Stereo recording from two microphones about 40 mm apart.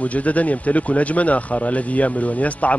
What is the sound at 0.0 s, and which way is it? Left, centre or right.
Speech, left.